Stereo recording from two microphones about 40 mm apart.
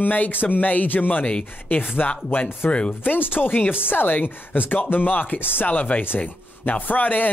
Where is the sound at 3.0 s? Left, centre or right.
Left.